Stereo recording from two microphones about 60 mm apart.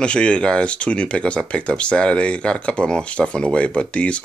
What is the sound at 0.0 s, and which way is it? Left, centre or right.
Speech, centre.